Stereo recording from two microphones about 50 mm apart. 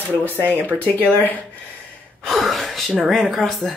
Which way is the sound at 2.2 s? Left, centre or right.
Centre.